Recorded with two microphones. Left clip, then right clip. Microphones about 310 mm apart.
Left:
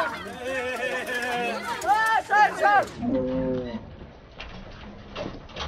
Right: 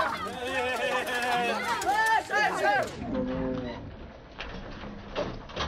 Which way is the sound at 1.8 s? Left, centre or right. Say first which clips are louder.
Left 4 dB; centre.